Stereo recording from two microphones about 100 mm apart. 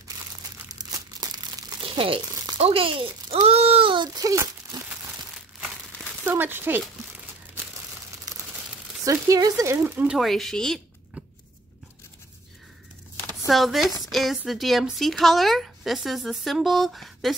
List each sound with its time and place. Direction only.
0.7 s crumpling: 40° right (ahead or behind)
1.8 s crumpling: 65° right (ahead or behind)
2.3 s a sound: 40° right (ahead or behind)
2.6 s speech: 65° right (ahead or behind)
3.4 s a sound: 80° right
3.9 s speech: 40° right (ahead or behind)
6.2 s speech: 20° right (ahead or behind)
9.0 s speech: 35° right (ahead or behind)
9.8 s speech: 15° right (ahead or behind)
10.1 s a woman's voice: 5° left (ahead or behind)
13.5 s a woman's voice: centre (ahead or behind)